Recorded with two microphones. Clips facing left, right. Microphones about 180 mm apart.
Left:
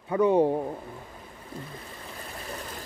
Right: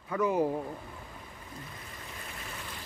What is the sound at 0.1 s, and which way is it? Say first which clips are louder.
Speech: left 7 dB; 30° left (ahead or behind).